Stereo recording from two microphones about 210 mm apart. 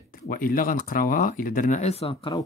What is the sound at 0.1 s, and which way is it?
Speech, 40° left (ahead or behind).